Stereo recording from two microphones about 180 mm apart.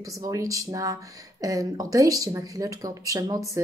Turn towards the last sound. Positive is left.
turn(degrees=-20)  # may be behind; listen again after turning